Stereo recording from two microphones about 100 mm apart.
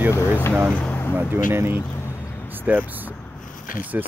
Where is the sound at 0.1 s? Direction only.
30° left (ahead or behind).